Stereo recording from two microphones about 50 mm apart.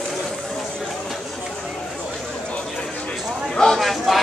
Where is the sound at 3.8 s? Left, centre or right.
Centre.